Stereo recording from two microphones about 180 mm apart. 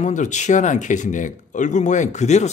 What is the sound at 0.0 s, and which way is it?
Speech, 40° left (ahead or behind).